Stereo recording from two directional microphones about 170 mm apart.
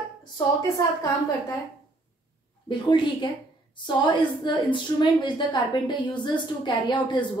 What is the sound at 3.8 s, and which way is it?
A woman's voice, 25° left (ahead or behind).